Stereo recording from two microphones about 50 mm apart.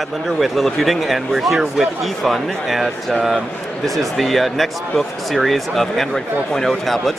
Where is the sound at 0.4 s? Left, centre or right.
Centre.